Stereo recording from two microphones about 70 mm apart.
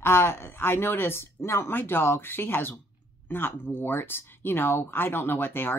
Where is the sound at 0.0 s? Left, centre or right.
Left.